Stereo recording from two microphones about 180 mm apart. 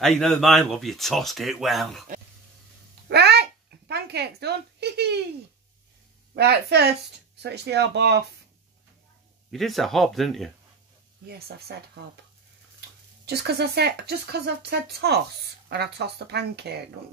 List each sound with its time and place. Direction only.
0.0 s speech: centre (ahead or behind)
3.1 s a child's voice: 65° right (ahead or behind)
6.3 s speech: 65° right (ahead or behind)
9.5 s speech: centre (ahead or behind)
11.2 s speech: 60° right (ahead or behind)
13.2 s speech: 65° right (ahead or behind)